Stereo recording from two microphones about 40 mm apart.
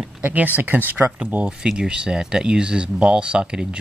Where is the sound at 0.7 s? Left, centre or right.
Right.